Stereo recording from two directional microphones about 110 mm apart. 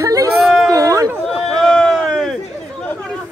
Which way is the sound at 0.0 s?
30° right (ahead or behind).